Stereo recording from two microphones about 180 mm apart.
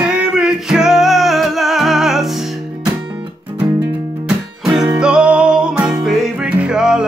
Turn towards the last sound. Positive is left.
turn(degrees=-5)  # may be behind; listen again after turning